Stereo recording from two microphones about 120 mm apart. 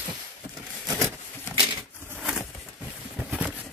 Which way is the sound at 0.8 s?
25° right (ahead or behind).